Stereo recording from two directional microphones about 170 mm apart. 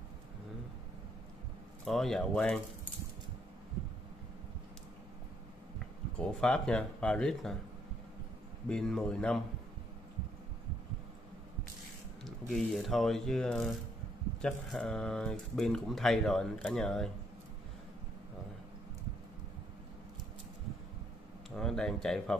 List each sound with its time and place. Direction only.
1.9 s speech: centre (ahead or behind)
6.1 s speech: 5° left (ahead or behind)
8.6 s speech: 5° left (ahead or behind)
12.3 s speech: 5° left (ahead or behind)
21.5 s speech: 5° left (ahead or behind)